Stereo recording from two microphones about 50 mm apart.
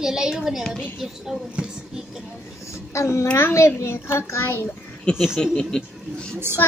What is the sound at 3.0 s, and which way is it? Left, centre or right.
Speech, left.